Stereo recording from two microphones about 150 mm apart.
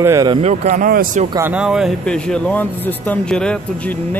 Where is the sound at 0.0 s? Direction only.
20° right (ahead or behind).